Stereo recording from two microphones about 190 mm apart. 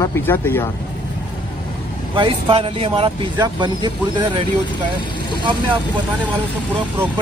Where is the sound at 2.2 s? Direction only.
25° right (ahead or behind).